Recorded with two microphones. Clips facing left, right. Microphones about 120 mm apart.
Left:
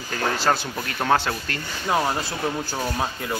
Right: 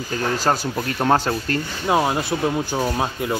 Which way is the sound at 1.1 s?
40° right (ahead or behind).